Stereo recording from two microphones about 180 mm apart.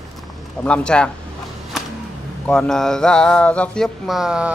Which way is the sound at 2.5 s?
5° left (ahead or behind).